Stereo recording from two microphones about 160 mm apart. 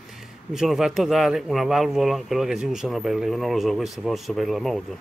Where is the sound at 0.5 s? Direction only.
Centre (ahead or behind).